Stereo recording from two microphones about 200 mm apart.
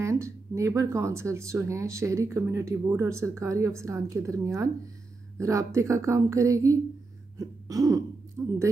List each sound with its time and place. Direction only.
0.0 s speech: 15° right (ahead or behind)
7.3 s throat clearing: 20° right (ahead or behind)
8.4 s speech: 15° right (ahead or behind)